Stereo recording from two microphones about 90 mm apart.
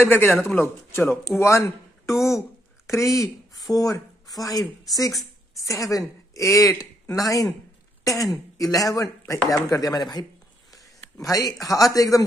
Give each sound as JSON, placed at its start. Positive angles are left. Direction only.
{"t": 0.0, "sound": "a man's voice", "side_deg": 25}
{"t": 11.5, "sound": "a man's voice", "side_deg": 0}
{"t": 11.8, "sound": "speech", "side_deg": 40}